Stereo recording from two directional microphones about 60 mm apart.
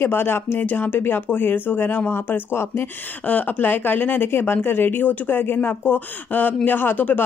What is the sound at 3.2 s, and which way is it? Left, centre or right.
Speech, left.